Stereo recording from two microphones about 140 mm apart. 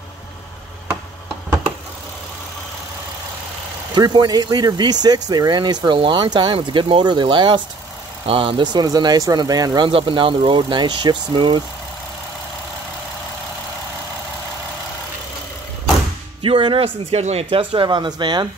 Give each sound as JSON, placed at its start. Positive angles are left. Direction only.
{"t": 3.9, "sound": "speech", "side_deg": -30}
{"t": 9.8, "sound": "speech", "side_deg": -40}
{"t": 16.4, "sound": "speech", "side_deg": -40}